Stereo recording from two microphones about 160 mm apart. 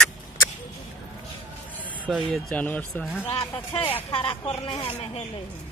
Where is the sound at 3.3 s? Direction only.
20° left (ahead or behind).